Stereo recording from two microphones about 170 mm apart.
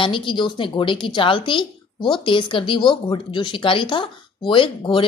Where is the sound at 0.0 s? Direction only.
30° left (ahead or behind).